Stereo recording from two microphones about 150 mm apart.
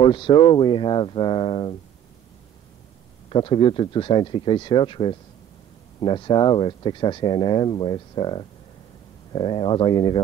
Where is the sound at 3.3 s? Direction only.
35° left (ahead or behind).